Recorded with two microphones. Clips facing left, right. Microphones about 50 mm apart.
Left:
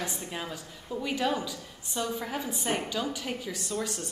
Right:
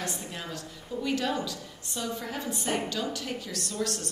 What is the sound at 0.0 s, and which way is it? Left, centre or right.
A woman's voice, centre.